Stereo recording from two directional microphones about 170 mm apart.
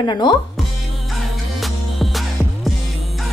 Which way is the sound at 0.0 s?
25° left (ahead or behind).